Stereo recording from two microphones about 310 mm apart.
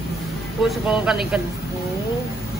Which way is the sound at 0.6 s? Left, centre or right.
Centre.